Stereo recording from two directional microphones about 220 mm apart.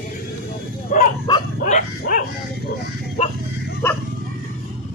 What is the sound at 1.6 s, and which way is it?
Dog, 40° left (ahead or behind).